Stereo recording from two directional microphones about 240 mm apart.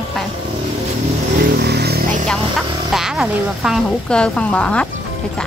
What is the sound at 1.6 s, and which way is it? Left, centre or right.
Vehicle, right.